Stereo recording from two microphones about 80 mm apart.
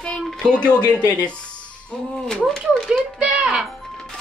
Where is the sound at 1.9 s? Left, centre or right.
Centre.